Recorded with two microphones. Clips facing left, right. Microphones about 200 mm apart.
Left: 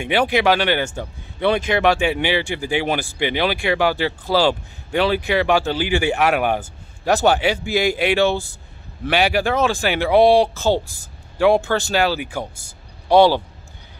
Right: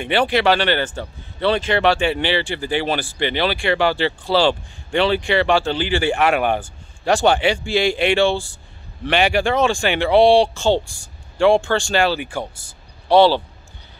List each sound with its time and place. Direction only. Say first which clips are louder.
0.0 s speech: even; 10° left (ahead or behind)